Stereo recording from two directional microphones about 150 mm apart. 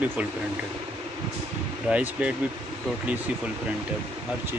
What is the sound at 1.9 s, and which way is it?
Speech, 10° right (ahead or behind).